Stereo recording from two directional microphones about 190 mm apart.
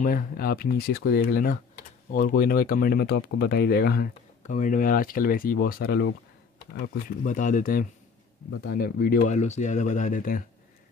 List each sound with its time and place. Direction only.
0.0 s speech: 50° left (ahead or behind)
7.2 s speech: 40° left (ahead or behind)